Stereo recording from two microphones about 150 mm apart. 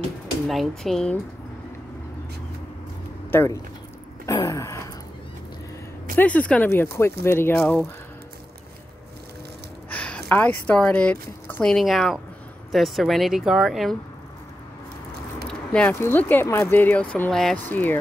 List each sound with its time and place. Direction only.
0.5 s speech: centre (ahead or behind)
3.3 s speech: 15° left (ahead or behind)
4.3 s a sound: 20° left (ahead or behind)
6.1 s speech: 10° left (ahead or behind)
9.8 s speech: 10° left (ahead or behind)
15.4 s biting: 5° left (ahead or behind)
15.9 s speech: 15° left (ahead or behind)